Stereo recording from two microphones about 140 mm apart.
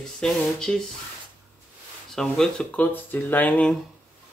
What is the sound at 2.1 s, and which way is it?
Speech, 5° left (ahead or behind).